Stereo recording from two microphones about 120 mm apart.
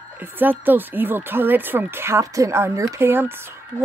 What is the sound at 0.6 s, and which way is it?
Speech, 15° right (ahead or behind).